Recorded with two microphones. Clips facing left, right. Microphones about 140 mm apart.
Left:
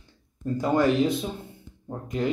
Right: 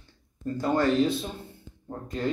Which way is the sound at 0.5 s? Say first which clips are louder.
Left 2 dB; 15° left (ahead or behind).